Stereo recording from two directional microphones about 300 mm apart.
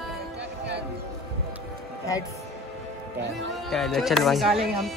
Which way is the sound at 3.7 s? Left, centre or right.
Centre.